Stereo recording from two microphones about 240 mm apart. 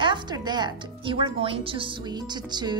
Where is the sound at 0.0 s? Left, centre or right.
Centre.